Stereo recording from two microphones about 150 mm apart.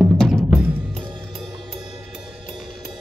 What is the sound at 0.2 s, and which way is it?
Music, 5° left (ahead or behind).